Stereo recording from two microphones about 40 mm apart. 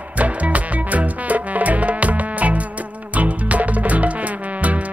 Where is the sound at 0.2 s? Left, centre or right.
Right.